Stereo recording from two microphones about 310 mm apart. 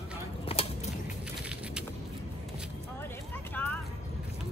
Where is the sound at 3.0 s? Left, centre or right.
Centre.